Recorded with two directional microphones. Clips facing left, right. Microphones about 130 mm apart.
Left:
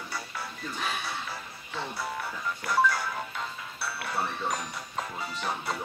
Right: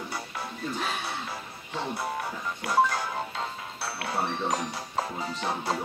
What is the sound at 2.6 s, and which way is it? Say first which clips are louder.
Music: right 2 dB; 20° right (ahead or behind).